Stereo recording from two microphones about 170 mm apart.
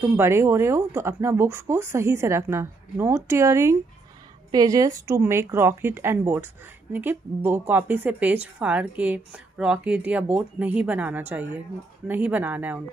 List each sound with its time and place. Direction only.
0.0 s speech: 15° right (ahead or behind)